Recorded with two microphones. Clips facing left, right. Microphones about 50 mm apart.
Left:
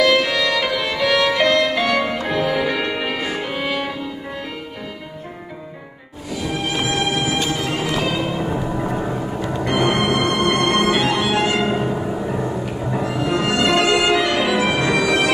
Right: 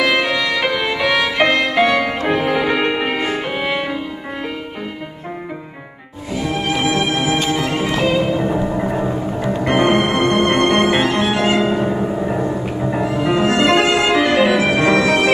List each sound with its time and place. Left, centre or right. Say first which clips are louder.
0.0 s music: even; right
7.0 s music: right 3 dB; right
9.7 s music: right 3 dB; right
11.5 s music: right 3 dB; centre
13.1 s violin: right 4 dB; right